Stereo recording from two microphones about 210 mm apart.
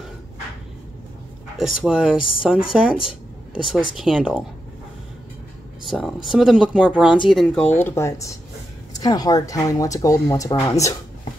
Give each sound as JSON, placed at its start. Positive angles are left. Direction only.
{"t": 1.6, "sound": "speech", "side_deg": -5}
{"t": 5.9, "sound": "speech", "side_deg": 0}